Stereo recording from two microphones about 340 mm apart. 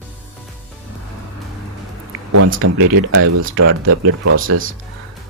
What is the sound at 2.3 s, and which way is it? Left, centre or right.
Speech, right.